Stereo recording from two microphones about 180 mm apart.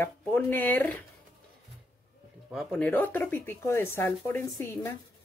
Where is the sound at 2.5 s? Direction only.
10° left (ahead or behind).